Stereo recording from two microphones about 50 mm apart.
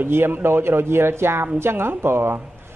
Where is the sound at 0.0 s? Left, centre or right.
Right.